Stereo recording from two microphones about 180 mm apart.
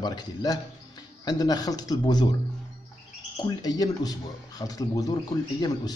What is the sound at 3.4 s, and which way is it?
Speech, 20° left (ahead or behind).